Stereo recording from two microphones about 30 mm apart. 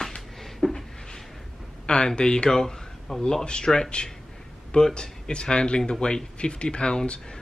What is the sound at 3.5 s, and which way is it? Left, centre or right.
Speech, left.